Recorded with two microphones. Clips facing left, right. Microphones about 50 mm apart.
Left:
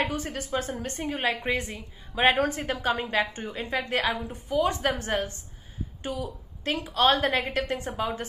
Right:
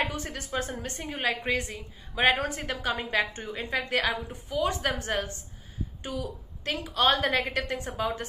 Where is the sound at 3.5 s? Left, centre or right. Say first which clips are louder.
Even; centre.